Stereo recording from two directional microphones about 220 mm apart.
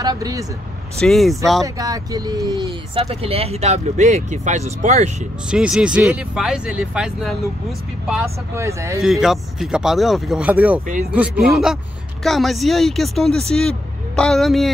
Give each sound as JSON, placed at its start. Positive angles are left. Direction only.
{"t": 0.0, "sound": "speech", "side_deg": -15}
{"t": 0.9, "sound": "speech", "side_deg": 0}
{"t": 1.6, "sound": "speech", "side_deg": -15}
{"t": 5.5, "sound": "speech", "side_deg": -5}
{"t": 9.0, "sound": "speech", "side_deg": 0}